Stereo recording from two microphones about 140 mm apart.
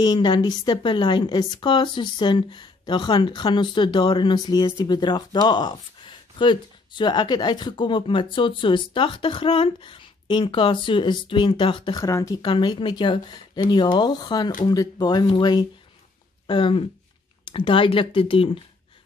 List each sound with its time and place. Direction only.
0.0 s speech: 30° left (ahead or behind)